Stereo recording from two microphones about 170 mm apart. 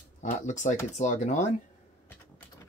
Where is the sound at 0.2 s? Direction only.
45° left (ahead or behind).